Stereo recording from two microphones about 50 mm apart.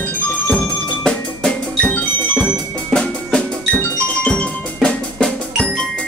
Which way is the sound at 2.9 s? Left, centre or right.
Centre.